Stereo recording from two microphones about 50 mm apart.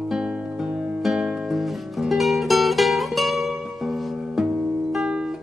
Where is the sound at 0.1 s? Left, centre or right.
Centre.